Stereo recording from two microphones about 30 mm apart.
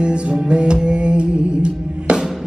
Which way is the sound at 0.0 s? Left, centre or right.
Right.